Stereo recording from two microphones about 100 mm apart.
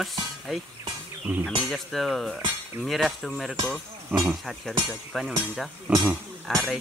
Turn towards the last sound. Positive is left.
turn(degrees=0)  # may be behind; listen again after turning